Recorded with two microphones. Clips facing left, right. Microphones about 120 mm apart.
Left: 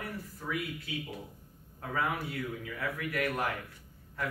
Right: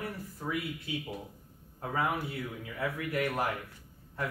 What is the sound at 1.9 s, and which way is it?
Speech, 25° right (ahead or behind).